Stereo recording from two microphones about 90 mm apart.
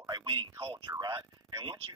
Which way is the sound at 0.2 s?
70° right (ahead or behind).